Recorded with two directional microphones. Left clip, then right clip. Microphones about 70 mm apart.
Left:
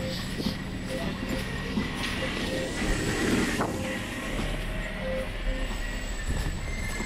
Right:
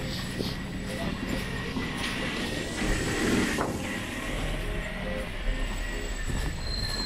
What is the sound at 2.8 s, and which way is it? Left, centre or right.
Vehicle, right.